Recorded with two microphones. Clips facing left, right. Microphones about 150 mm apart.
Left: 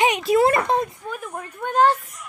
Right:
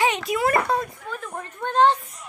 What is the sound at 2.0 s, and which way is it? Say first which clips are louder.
Speech: left 1 dB; 30° right (ahead or behind).